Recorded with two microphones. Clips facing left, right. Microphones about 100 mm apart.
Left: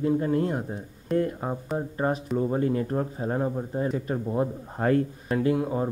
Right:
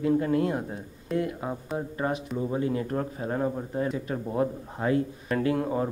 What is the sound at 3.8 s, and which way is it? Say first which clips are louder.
Speech: left 4 dB; 40° left (ahead or behind).